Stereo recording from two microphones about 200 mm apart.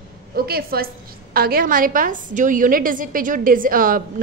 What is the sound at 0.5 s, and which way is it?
A woman's voice, 50° right (ahead or behind).